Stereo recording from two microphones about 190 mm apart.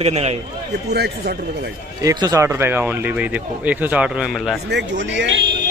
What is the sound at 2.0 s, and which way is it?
Speech, 20° right (ahead or behind).